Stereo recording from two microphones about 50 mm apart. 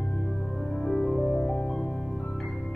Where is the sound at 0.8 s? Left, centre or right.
Centre.